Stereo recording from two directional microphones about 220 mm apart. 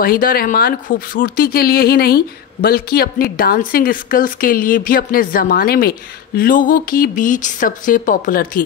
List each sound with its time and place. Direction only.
0.0 s speech: 40° left (ahead or behind)